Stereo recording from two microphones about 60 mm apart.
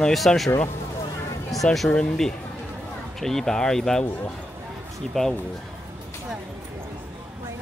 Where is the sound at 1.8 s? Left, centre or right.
Left.